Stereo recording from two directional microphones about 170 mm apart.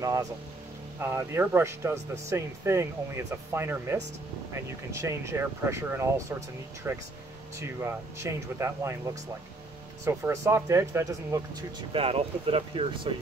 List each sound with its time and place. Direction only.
0.0 s speech: 20° right (ahead or behind)
11.9 s speech: 35° right (ahead or behind)